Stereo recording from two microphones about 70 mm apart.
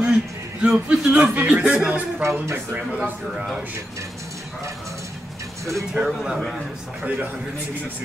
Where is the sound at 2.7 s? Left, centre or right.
Right.